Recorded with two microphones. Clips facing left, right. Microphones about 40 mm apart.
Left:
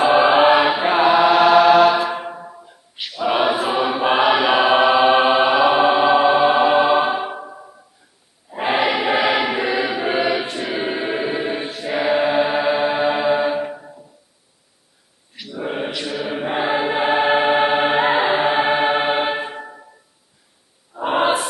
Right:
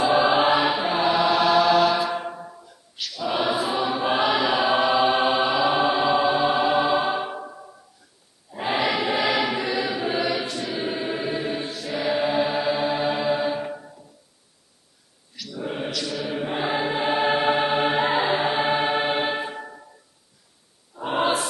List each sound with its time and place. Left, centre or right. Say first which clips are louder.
0.0 s chant: left 6 dB; left
8.5 s choir: left 5 dB; left
15.3 s choir: left 5 dB; left
20.9 s a sound: left 5 dB; left